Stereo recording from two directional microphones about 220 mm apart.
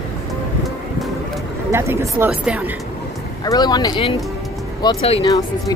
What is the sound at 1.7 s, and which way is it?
Speech, 10° right (ahead or behind).